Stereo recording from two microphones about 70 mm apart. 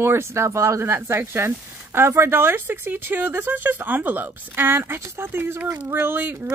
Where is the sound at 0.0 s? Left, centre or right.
Right.